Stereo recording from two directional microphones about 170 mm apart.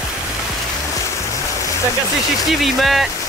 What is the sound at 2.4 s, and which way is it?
Speech, centre (ahead or behind).